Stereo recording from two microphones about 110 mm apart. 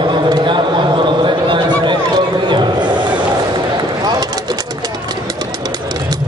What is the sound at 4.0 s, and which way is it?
Bird, 40° right (ahead or behind).